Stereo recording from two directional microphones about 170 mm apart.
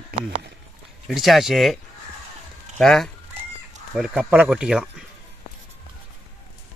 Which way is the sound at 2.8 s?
Centre (ahead or behind).